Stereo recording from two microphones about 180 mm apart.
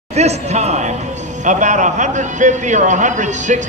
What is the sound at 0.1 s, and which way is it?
A man's voice, 35° right (ahead or behind).